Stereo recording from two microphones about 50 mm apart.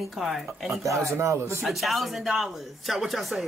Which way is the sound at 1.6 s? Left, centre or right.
Centre.